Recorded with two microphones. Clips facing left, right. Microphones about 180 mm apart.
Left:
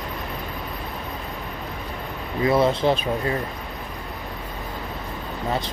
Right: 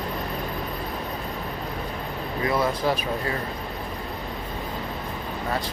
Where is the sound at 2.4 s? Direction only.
25° left (ahead or behind).